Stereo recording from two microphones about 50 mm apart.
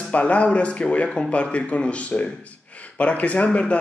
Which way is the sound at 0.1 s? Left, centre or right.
Left.